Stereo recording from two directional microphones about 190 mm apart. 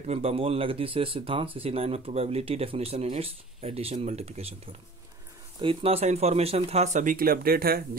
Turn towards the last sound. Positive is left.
turn(degrees=-55)  # may be behind; listen again after turning